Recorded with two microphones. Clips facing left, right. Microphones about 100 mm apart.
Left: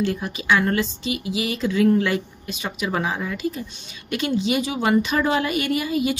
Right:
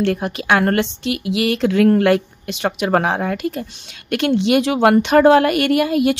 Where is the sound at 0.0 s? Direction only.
70° right (ahead or behind).